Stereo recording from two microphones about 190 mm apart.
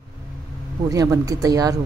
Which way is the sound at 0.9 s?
20° right (ahead or behind).